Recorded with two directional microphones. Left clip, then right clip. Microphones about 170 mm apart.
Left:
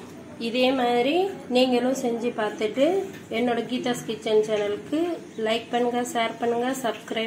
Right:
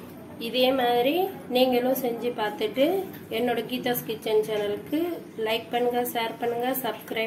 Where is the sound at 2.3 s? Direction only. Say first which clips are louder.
Left 1 dB; 20° left (ahead or behind).